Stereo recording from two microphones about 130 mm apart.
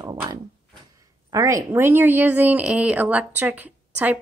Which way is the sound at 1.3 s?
25° right (ahead or behind).